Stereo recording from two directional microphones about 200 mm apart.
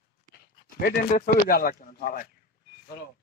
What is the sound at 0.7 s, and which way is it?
Speech, 45° left (ahead or behind).